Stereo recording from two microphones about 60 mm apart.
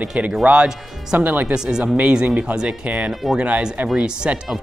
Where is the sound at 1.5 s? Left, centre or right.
Centre.